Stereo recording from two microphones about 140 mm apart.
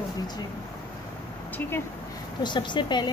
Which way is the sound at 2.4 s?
35° left (ahead or behind).